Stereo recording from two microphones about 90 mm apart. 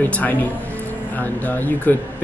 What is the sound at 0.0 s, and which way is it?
Speech, 20° left (ahead or behind).